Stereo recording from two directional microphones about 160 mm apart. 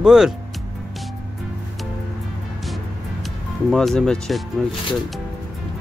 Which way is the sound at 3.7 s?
5° left (ahead or behind).